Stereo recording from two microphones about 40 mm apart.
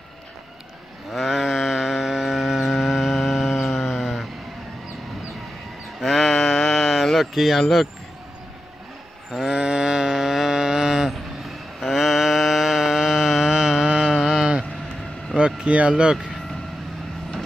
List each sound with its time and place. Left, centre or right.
1.1 s mantra: centre
5.9 s a sound: centre
9.4 s cattle: right
13.8 s music: centre
15.3 s vehicle: right
16.1 s speech: centre